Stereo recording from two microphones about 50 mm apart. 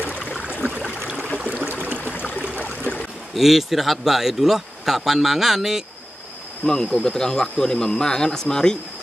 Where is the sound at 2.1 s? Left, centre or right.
Left.